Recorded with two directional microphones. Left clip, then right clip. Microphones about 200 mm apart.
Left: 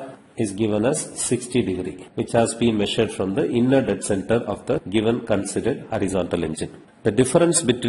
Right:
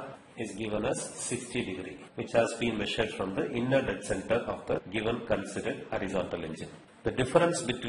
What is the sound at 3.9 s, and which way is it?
A man's voice, 30° left (ahead or behind).